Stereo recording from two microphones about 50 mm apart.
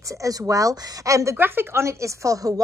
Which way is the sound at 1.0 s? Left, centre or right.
Right.